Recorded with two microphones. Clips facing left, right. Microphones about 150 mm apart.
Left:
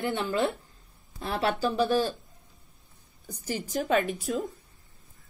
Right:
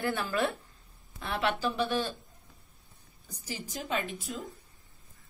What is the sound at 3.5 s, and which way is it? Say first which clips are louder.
Speech: left 8 dB; 50° left (ahead or behind).